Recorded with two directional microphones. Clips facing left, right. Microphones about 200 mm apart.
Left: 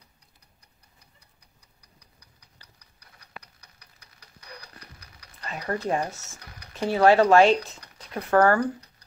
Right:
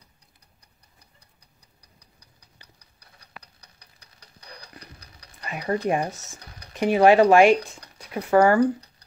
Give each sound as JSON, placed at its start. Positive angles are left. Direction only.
{"t": 5.4, "sound": "speech", "side_deg": -15}